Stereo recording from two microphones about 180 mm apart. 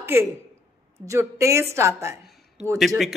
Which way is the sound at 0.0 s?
10° right (ahead or behind).